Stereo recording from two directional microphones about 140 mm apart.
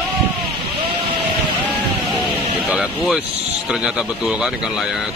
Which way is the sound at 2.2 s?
5° right (ahead or behind).